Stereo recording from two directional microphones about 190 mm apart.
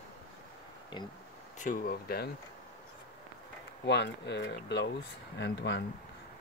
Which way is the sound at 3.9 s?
65° left (ahead or behind).